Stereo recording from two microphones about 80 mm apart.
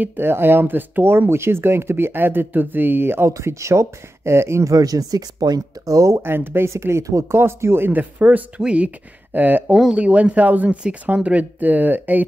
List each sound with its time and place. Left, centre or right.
0.0 s speech: right
4.7 s speech: right
6.2 s speech: right
9.7 s speech: centre